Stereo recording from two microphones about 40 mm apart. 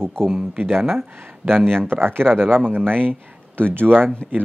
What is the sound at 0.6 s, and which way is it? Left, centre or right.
Speech, centre.